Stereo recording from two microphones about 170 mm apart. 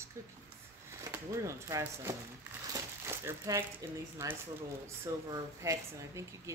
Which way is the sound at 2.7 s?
15° right (ahead or behind).